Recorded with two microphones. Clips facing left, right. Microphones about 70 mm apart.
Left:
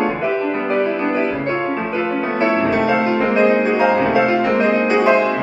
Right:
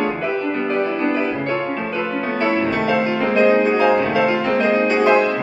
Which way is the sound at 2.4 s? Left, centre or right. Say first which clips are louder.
Left 3 dB; left.